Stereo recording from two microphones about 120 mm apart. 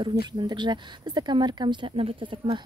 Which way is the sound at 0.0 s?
40° right (ahead or behind).